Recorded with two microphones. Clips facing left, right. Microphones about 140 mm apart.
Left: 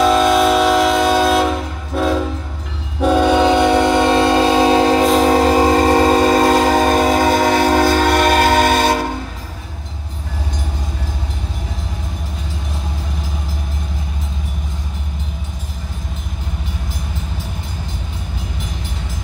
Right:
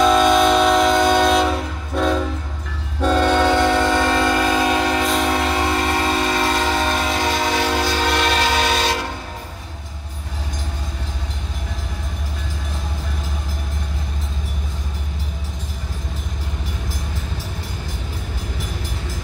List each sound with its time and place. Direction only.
0.0 s train: 5° left (ahead or behind); by 9.0 s 50° left (ahead or behind)